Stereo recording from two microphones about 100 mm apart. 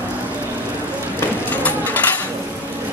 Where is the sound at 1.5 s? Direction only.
15° left (ahead or behind).